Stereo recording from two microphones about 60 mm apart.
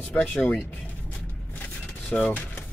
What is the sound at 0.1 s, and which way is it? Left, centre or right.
Speech, left.